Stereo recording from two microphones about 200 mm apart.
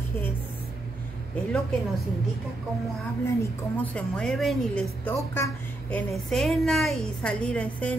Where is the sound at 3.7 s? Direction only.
5° left (ahead or behind).